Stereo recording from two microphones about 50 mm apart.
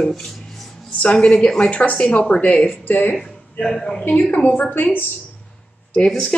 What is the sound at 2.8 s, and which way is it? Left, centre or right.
Speech, left.